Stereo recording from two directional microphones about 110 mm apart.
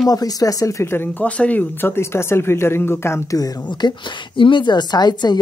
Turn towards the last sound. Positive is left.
turn(degrees=40)  # may be behind; listen again after turning